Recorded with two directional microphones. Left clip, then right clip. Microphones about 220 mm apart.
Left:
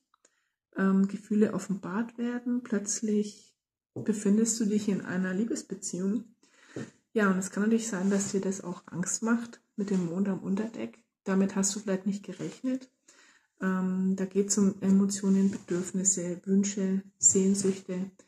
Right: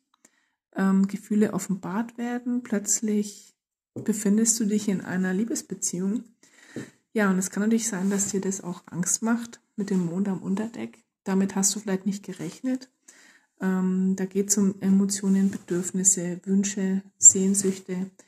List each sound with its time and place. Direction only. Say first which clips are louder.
0.7 s speech: right 3 dB; 45° right (ahead or behind)